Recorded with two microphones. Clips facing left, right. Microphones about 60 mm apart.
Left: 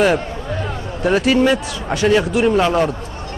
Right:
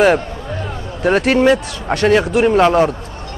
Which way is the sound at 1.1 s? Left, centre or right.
Right.